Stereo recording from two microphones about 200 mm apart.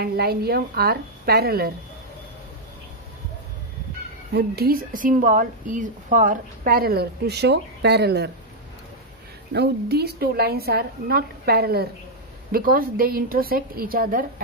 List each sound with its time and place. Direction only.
0.0 s a woman's voice: 50° right (ahead or behind)
4.3 s a woman's voice: 55° right (ahead or behind)
9.5 s a woman's voice: 55° right (ahead or behind)